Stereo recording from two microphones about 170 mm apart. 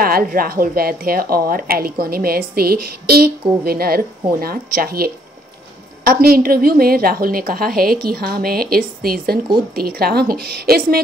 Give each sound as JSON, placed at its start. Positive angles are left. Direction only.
{"t": 0.0, "sound": "a woman's voice", "side_deg": -60}